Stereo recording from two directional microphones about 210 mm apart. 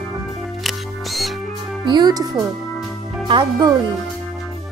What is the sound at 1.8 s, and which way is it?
Speech, 20° right (ahead or behind).